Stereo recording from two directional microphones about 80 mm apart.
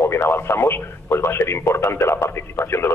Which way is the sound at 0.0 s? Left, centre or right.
Left.